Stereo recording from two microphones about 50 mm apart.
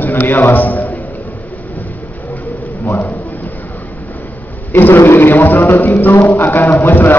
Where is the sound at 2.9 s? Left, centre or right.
Left.